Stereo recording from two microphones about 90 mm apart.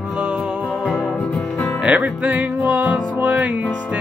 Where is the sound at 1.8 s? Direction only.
15° right (ahead or behind).